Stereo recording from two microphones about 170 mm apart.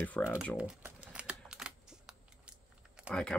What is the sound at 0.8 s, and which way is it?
Typing, 5° right (ahead or behind).